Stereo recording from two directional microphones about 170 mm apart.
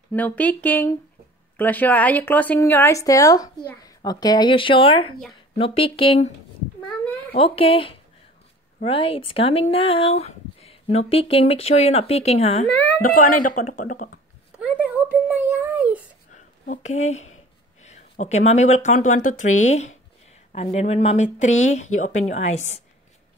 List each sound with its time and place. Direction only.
0.1 s speech: 10° left (ahead or behind); by 6.3 s 35° left (ahead or behind)
7.3 s speech: 35° left (ahead or behind)
13.0 s a woman's voice: 55° left (ahead or behind)
14.6 s a sound: 10° right (ahead or behind)
16.6 s a woman's voice: 50° left (ahead or behind)